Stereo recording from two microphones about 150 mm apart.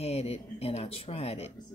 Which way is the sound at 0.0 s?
45° left (ahead or behind).